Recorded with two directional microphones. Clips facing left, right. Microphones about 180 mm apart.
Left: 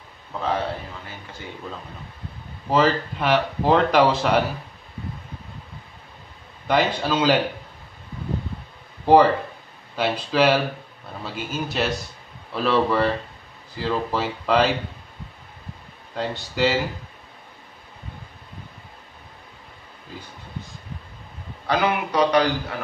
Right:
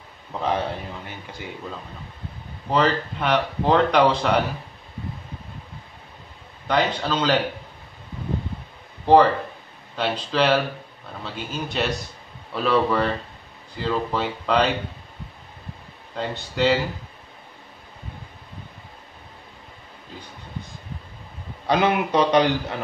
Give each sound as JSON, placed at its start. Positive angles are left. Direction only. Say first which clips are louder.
{"t": 2.7, "sound": "speech", "louder": "left 1 dB", "side_deg": 5}
{"t": 6.7, "sound": "speech", "louder": "left 1 dB", "side_deg": 5}
{"t": 9.0, "sound": "speech", "louder": "even", "side_deg": 10}
{"t": 16.2, "sound": "speech", "louder": "left 1 dB", "side_deg": 0}
{"t": 21.6, "sound": "a man's voice", "louder": "right 2 dB", "side_deg": -25}